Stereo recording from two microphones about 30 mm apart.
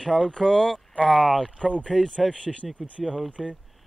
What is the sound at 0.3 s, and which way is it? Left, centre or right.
Speech, centre.